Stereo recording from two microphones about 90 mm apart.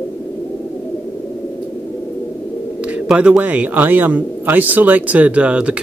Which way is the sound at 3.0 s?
10° right (ahead or behind).